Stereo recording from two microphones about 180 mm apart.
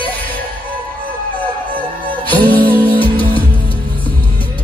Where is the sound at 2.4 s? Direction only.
10° left (ahead or behind).